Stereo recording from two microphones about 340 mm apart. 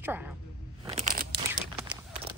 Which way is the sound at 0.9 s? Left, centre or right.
Right.